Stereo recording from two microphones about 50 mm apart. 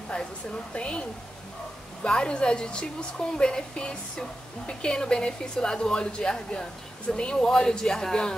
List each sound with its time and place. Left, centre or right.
0.7 s a woman's voice: left
2.0 s a woman's voice: centre